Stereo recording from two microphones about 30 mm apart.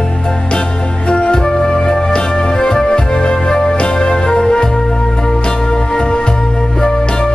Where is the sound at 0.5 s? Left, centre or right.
Left.